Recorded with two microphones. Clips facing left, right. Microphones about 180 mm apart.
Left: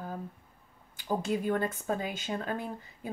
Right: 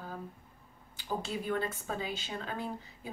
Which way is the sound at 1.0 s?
50° left (ahead or behind).